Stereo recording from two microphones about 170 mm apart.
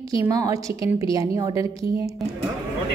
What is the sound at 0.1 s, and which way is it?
A woman's voice, 20° right (ahead or behind).